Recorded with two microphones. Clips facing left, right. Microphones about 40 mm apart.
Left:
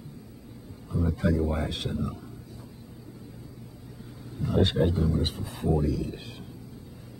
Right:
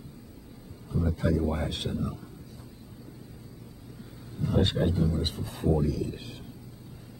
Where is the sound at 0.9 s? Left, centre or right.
Centre.